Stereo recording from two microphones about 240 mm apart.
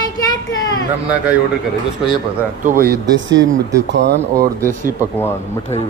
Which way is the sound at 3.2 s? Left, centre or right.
Right.